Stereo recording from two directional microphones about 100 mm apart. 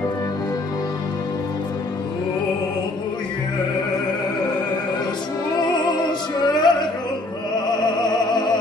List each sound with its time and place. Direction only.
5.8 s music: 50° left (ahead or behind)